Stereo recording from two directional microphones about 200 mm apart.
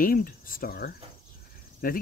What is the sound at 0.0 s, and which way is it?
Speech, 45° left (ahead or behind).